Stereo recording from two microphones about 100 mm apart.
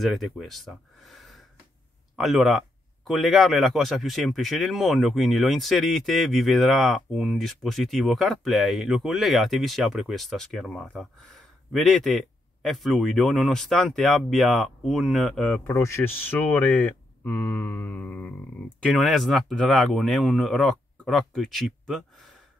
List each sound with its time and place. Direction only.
0.0 s speech: centre (ahead or behind)
15.6 s speech: 25° left (ahead or behind)
18.9 s speech: centre (ahead or behind)